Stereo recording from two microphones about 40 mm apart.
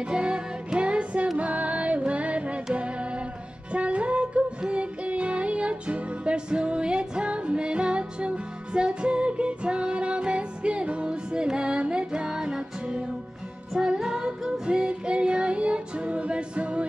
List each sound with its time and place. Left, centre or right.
0.0 s music: right
13.7 s female singing: centre